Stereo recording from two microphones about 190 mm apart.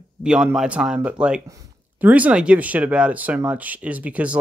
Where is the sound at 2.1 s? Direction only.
5° right (ahead or behind).